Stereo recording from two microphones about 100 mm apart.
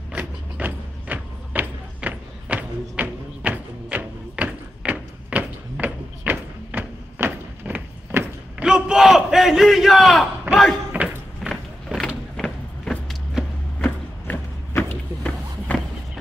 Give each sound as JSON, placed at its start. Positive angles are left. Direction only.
{"t": 0.1, "sound": "mechanisms", "side_deg": -15}
{"t": 8.6, "sound": "battle cry", "side_deg": -5}
{"t": 10.5, "sound": "speech", "side_deg": 5}
{"t": 11.4, "sound": "vehicle", "side_deg": 0}
{"t": 12.4, "sound": "vehicle", "side_deg": 10}
{"t": 13.1, "sound": "vehicle", "side_deg": 0}
{"t": 13.8, "sound": "a sound", "side_deg": 20}